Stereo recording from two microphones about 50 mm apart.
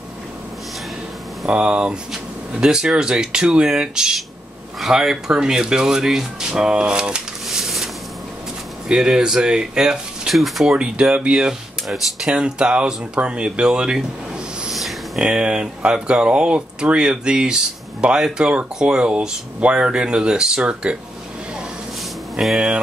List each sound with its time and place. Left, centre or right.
1.5 s speech: centre
7.4 s a sound: centre
8.8 s speech: centre
10.8 s speech: centre
14.7 s a sound: centre
15.1 s speech: centre
22.4 s speech: centre